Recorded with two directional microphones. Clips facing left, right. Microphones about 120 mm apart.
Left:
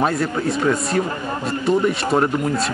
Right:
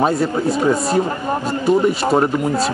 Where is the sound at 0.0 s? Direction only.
25° right (ahead or behind).